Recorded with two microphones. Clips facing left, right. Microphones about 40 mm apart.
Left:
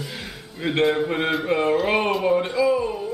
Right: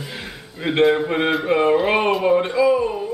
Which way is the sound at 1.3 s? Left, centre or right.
Centre.